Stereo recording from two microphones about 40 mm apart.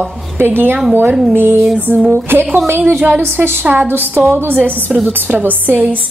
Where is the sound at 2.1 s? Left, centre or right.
Right.